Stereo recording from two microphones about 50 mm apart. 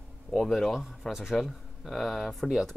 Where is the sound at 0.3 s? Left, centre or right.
Centre.